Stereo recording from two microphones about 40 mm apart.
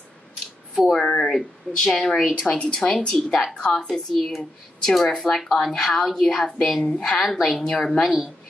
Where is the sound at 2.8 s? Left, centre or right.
Left.